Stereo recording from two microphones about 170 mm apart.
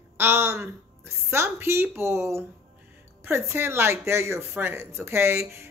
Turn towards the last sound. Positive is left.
turn(degrees=-15)  # may be behind; listen again after turning